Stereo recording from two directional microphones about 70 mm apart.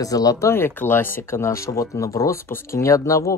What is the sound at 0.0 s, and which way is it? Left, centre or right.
Speech, left.